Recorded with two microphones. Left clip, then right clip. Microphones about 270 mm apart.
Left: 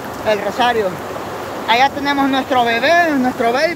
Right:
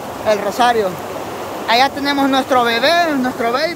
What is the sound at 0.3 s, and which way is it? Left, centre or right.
Speech, centre.